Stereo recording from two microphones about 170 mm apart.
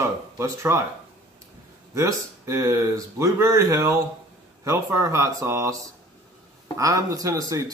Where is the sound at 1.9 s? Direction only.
20° right (ahead or behind).